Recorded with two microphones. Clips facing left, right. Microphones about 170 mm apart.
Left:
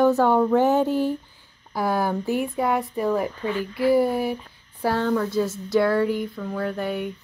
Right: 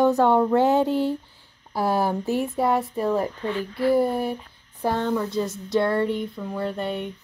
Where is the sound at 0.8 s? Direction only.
25° right (ahead or behind).